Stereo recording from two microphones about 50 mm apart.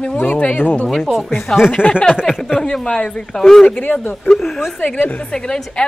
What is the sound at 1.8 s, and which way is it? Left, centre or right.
Speech, centre.